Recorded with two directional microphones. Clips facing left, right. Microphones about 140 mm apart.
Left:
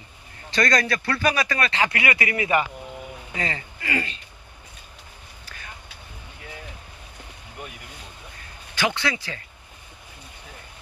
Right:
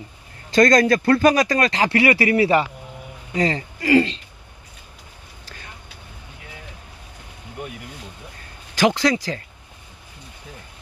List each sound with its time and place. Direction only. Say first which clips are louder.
0.5 s speech: right 8 dB; 45° right (ahead or behind)
5.4 s vehicle: right 2 dB; 30° right (ahead or behind)
8.7 s speech: right 8 dB; 40° right (ahead or behind)